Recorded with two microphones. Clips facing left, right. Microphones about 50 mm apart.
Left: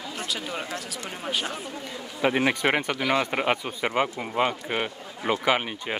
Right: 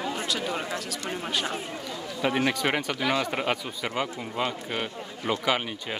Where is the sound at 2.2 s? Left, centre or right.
Centre.